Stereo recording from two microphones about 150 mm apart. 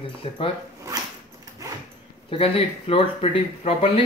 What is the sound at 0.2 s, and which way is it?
Speech, 40° left (ahead or behind).